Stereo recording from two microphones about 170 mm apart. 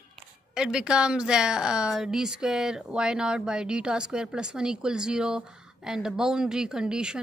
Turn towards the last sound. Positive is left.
turn(degrees=-5)  # may be behind; listen again after turning